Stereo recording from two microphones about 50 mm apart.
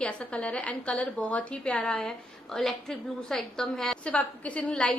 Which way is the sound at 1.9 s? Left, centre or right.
Centre.